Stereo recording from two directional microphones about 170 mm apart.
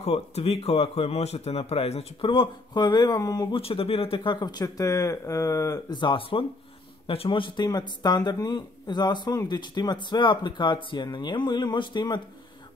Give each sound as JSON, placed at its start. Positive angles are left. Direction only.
{"t": 0.0, "sound": "a man's voice", "side_deg": 40}